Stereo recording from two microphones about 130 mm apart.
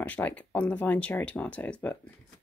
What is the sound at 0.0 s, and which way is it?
Speech, 10° left (ahead or behind).